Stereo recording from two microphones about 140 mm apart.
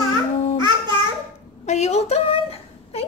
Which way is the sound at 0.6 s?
35° right (ahead or behind).